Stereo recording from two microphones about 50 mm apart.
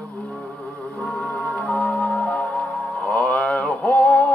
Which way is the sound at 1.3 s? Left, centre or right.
Left.